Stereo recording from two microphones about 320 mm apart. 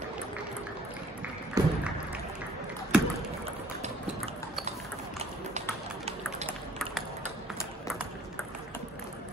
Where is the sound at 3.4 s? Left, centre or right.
Centre.